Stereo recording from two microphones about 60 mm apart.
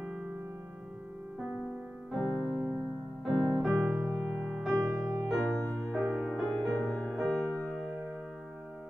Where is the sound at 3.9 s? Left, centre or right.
Centre.